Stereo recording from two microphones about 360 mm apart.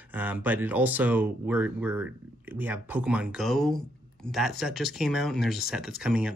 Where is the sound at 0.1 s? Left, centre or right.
Centre.